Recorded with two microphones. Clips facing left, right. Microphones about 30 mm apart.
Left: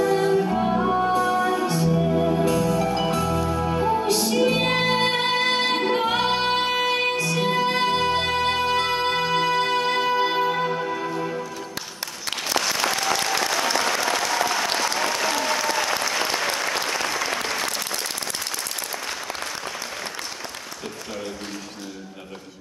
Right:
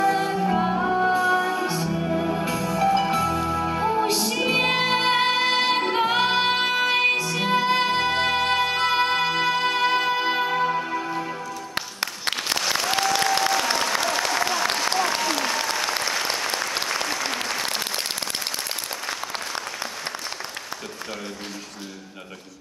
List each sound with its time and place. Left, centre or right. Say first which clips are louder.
0.0 s music: left 2 dB; centre
12.9 s applause: right 2 dB; right
14.5 s applause: even; centre
16.5 s applause: left 1 dB; centre